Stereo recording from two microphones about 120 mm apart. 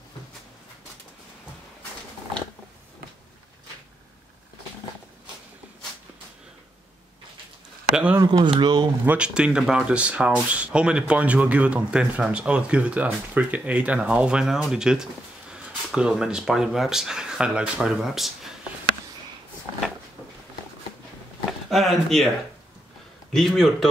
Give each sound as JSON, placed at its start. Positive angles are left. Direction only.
{"t": 7.9, "sound": "speech", "side_deg": -10}
{"t": 8.3, "sound": "speech", "side_deg": -45}
{"t": 9.0, "sound": "speech", "side_deg": -10}
{"t": 21.5, "sound": "speech", "side_deg": 0}
{"t": 23.3, "sound": "a man's voice", "side_deg": 0}